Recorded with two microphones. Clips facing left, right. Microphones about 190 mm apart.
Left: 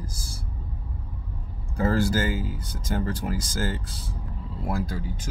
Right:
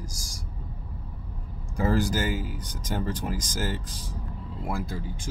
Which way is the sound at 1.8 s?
15° right (ahead or behind).